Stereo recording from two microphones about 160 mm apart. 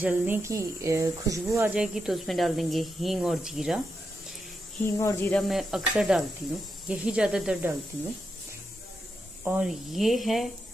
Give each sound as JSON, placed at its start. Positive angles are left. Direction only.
{"t": 0.0, "sound": "speech", "side_deg": -10}
{"t": 1.7, "sound": "speech", "side_deg": -5}
{"t": 4.9, "sound": "speech", "side_deg": 15}
{"t": 5.4, "sound": "speech", "side_deg": 0}
{"t": 9.4, "sound": "speech", "side_deg": -15}
{"t": 9.7, "sound": "speech", "side_deg": 0}